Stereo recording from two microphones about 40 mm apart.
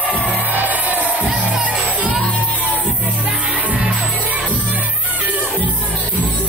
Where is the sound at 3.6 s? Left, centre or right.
Right.